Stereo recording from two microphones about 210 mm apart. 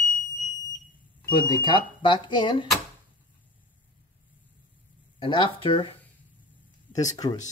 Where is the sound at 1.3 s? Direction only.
20° left (ahead or behind).